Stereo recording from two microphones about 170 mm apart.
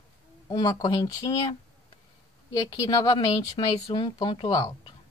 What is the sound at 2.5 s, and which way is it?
Speech, 25° left (ahead or behind).